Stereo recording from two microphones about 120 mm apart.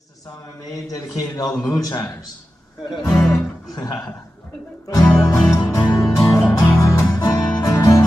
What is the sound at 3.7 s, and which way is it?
Speech, 30° left (ahead or behind).